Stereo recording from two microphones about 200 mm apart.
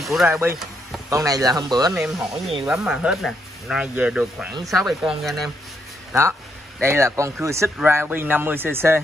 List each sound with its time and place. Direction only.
0.0 s speech: centre (ahead or behind)
0.3 s speech: 10° right (ahead or behind)
2.0 s speech: 5° right (ahead or behind)
6.8 s speech: 15° right (ahead or behind)